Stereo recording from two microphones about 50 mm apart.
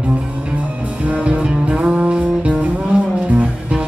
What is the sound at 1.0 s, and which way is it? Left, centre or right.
Music, right.